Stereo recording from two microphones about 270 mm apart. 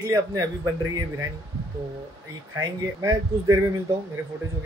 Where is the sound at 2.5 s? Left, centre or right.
Centre.